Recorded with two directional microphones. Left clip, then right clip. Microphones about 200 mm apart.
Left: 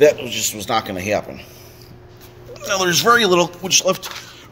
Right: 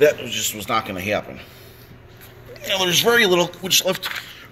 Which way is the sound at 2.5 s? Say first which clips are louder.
Left 1 dB; 15° left (ahead or behind).